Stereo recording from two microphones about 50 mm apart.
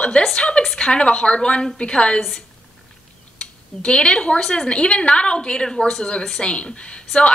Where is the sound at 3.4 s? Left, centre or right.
Left.